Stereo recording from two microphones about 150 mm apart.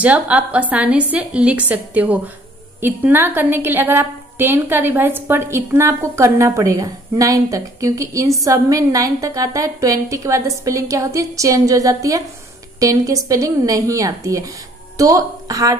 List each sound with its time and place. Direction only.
0.0 s a woman's voice: 10° right (ahead or behind)